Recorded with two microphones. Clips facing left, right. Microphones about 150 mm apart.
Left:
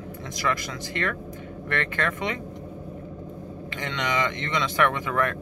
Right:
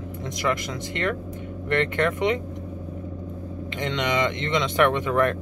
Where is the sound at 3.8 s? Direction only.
20° right (ahead or behind).